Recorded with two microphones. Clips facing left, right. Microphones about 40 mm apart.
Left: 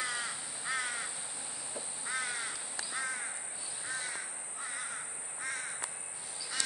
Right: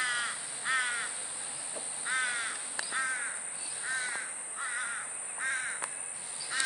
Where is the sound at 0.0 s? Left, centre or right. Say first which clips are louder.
Right 4 dB; right.